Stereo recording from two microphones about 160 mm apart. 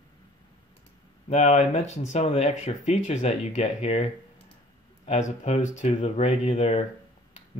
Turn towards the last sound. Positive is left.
turn(degrees=35)  # may be behind; listen again after turning